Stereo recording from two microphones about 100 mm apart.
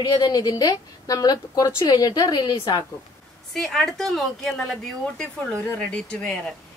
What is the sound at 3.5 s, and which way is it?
A woman's voice, 5° left (ahead or behind).